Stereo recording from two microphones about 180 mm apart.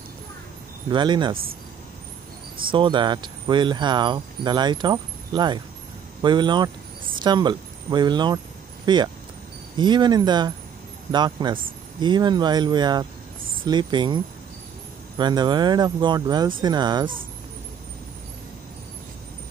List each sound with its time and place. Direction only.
0.8 s speech: 25° right (ahead or behind)
1.3 s speech: 55° right (ahead or behind)
2.7 s speech: 25° right (ahead or behind)